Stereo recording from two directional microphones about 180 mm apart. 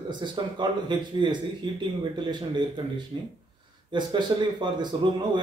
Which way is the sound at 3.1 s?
20° right (ahead or behind).